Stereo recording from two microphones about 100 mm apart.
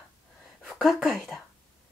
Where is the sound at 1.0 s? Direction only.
5° left (ahead or behind).